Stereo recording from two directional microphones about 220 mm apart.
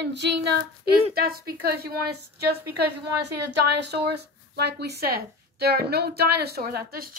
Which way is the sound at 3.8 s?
50° right (ahead or behind).